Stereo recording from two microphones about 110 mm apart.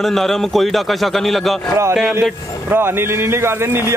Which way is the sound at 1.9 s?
15° right (ahead or behind).